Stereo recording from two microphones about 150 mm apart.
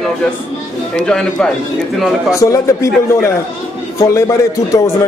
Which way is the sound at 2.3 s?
20° left (ahead or behind).